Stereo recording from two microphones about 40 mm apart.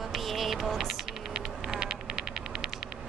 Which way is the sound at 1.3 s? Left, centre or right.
Centre.